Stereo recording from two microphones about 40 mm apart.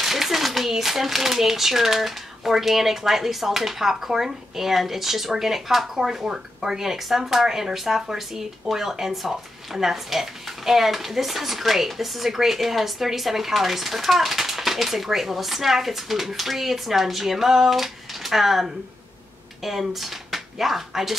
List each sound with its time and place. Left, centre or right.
0.0 s speech: centre